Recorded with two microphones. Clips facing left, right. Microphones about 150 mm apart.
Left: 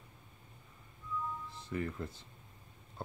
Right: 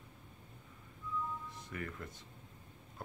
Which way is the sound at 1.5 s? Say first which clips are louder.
Left 6 dB; 30° left (ahead or behind).